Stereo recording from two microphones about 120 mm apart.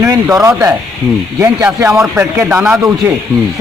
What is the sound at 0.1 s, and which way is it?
Speech, 25° right (ahead or behind).